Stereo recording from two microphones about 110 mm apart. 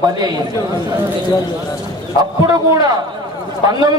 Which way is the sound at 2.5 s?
40° right (ahead or behind).